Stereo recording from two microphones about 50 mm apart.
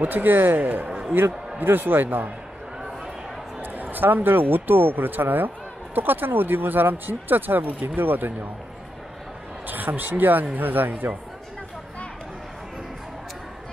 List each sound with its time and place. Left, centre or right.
0.0 s speech: right
3.6 s speech: right
9.7 s speech: right